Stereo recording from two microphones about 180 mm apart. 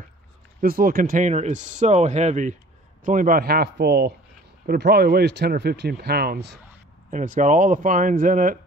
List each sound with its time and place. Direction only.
0.6 s speech: 55° right (ahead or behind)
7.1 s speech: 45° right (ahead or behind)